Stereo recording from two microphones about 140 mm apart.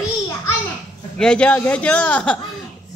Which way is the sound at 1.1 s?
5° left (ahead or behind).